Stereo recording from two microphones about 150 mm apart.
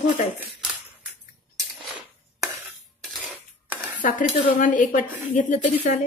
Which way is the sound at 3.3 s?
10° right (ahead or behind).